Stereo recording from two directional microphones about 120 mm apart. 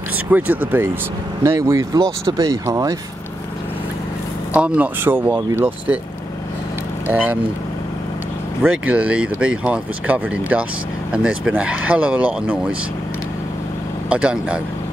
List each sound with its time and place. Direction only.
0.3 s speech: 15° right (ahead or behind)
1.4 s speech: 25° right (ahead or behind)
4.6 s speech: 10° right (ahead or behind)
7.1 s speech: 15° right (ahead or behind)
8.6 s speech: 10° right (ahead or behind)
14.0 s speech: 10° right (ahead or behind)